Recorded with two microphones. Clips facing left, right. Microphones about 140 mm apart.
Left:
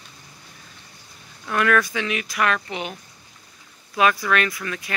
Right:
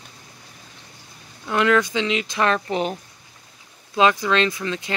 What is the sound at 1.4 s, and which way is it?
Speech, 20° right (ahead or behind).